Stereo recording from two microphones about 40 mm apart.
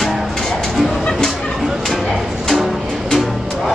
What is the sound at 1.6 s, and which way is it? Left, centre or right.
Music, centre.